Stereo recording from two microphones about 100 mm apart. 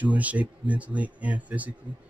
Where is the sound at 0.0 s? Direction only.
15° right (ahead or behind).